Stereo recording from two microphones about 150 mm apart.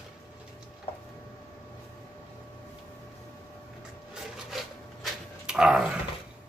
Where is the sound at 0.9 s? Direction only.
40° left (ahead or behind).